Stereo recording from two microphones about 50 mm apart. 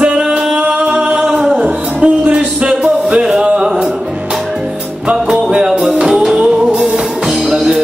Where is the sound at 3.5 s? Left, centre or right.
Centre.